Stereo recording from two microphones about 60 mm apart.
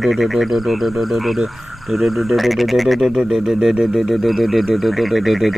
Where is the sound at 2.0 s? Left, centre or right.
Centre.